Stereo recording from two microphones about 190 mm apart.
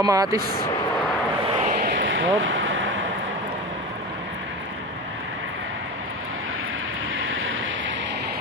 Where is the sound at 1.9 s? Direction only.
85° right.